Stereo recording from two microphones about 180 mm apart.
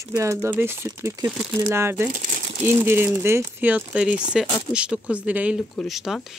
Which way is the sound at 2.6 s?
15° right (ahead or behind).